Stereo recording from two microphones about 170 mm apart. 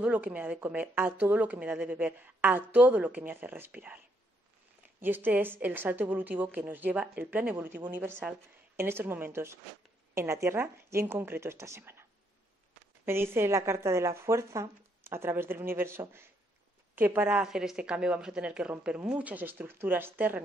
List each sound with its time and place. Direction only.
0.0 s a woman's voice: 10° right (ahead or behind)
5.0 s a woman's voice: 10° right (ahead or behind)
13.0 s a woman's voice: 15° right (ahead or behind)